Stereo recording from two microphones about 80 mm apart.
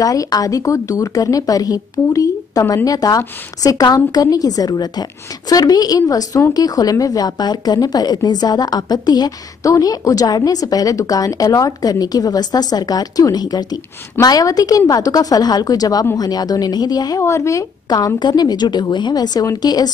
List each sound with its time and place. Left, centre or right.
0.0 s a woman's voice: left
17.2 s speech: left
17.8 s speech: left